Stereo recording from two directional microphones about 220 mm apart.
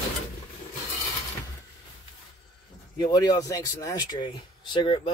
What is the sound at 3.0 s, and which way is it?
Speech, 15° left (ahead or behind).